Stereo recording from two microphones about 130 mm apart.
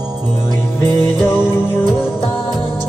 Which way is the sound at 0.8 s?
15° left (ahead or behind).